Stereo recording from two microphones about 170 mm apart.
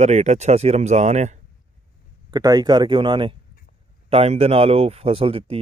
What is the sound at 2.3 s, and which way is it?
Speech, 20° right (ahead or behind).